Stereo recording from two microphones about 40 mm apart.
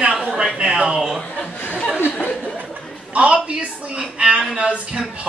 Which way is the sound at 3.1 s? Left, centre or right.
Right.